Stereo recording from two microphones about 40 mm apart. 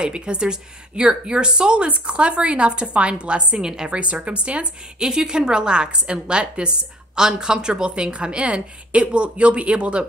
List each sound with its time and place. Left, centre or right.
0.0 s a woman's voice: right
3.6 s a woman's voice: centre
3.9 s a woman's voice: right
4.9 s a woman's voice: centre
7.2 s a woman's voice: centre